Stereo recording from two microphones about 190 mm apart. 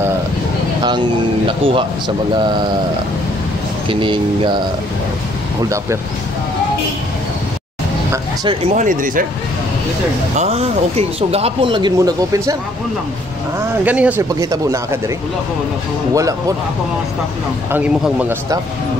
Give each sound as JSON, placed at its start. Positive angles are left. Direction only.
{"t": 1.7, "sound": "speech", "side_deg": -25}
{"t": 3.9, "sound": "speech", "side_deg": -25}
{"t": 8.6, "sound": "speech", "side_deg": -40}
{"t": 10.3, "sound": "speech", "side_deg": -35}
{"t": 13.8, "sound": "speech", "side_deg": -10}
{"t": 16.1, "sound": "speech", "side_deg": -15}
{"t": 17.6, "sound": "speech", "side_deg": -10}